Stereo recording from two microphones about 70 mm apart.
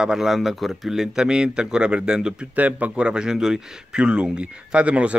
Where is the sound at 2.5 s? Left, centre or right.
Right.